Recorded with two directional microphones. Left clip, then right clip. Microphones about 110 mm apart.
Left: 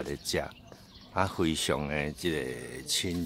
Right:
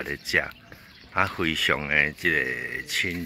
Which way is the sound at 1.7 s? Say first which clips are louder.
Right 9 dB; 30° left (ahead or behind).